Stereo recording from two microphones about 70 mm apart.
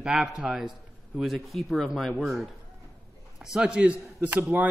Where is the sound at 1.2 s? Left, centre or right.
Centre.